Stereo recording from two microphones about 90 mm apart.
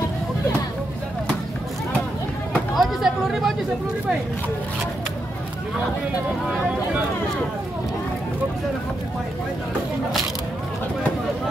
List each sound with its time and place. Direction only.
2.7 s speech: 5° right (ahead or behind)